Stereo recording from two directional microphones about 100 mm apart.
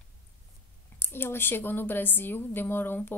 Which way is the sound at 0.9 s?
20° left (ahead or behind).